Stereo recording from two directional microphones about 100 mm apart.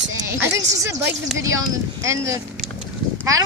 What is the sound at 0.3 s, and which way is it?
Speech, 25° right (ahead or behind).